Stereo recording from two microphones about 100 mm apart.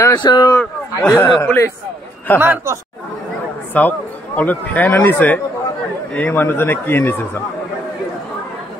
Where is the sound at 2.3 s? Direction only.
20° right (ahead or behind).